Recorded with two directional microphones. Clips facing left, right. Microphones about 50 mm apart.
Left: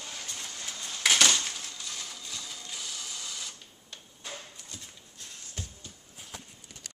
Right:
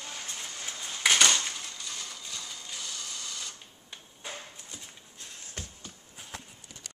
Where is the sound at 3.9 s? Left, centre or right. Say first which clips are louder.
Right 1 dB; centre.